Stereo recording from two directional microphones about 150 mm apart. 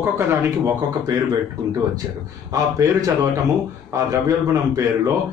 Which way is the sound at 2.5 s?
25° right (ahead or behind).